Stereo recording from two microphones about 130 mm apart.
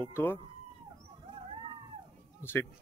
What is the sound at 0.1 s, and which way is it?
Speech, 15° left (ahead or behind).